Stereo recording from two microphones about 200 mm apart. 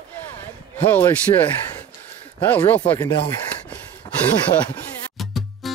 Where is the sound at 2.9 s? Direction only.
20° left (ahead or behind).